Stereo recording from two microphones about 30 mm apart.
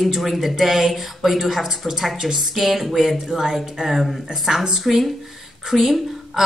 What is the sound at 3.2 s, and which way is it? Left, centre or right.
Speech, right.